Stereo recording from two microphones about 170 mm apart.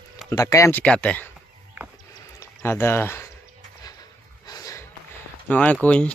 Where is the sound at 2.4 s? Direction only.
15° left (ahead or behind).